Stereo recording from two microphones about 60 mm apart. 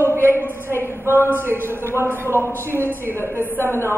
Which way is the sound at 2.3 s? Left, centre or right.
Left.